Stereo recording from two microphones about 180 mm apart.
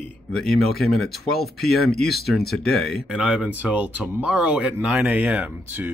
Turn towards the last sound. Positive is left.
turn(degrees=-10)  # may be behind; listen again after turning